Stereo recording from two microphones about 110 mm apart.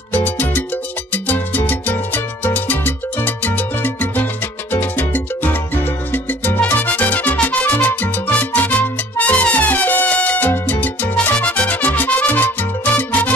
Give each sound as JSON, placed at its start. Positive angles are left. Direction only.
{"t": 0.1, "sound": "music", "side_deg": 15}